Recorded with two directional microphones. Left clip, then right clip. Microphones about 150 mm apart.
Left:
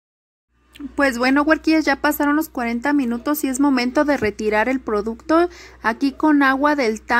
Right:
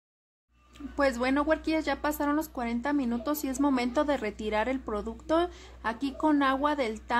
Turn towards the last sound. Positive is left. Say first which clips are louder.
# left 10 dB
turn(degrees=35)  # may be behind; listen again after turning